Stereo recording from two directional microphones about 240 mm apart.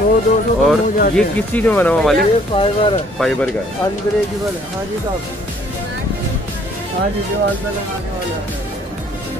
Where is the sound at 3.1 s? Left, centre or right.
Centre.